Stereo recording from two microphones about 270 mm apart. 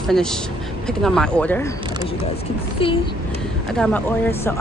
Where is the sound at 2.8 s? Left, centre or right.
Centre.